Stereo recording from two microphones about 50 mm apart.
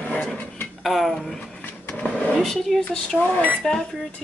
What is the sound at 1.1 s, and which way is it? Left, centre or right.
Speech, centre.